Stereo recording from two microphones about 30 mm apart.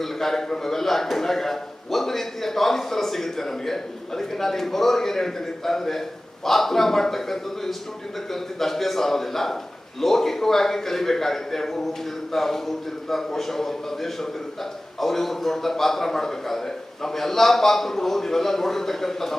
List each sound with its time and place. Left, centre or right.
0.0 s a man's voice: centre